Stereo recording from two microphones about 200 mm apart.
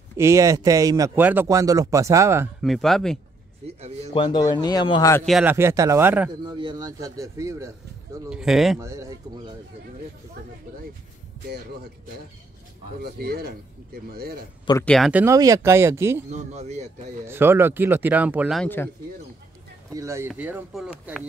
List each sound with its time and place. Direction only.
0.2 s speech: 15° right (ahead or behind)
2.6 s speech: centre (ahead or behind)
3.6 s speech: 30° right (ahead or behind)
4.1 s speech: 25° left (ahead or behind)
5.2 s speech: 5° right (ahead or behind)
6.4 s speech: 20° right (ahead or behind)
8.3 s speech: centre (ahead or behind)
8.7 s speech: 15° right (ahead or behind)
13.0 s speech: 50° right (ahead or behind)
14.9 s speech: centre (ahead or behind)
16.3 s speech: 35° right (ahead or behind)
17.3 s speech: 10° right (ahead or behind)
18.6 s speech: 10° left (ahead or behind)
19.9 s speech: 15° right (ahead or behind)